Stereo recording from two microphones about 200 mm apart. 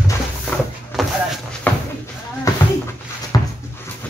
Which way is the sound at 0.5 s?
5° left (ahead or behind).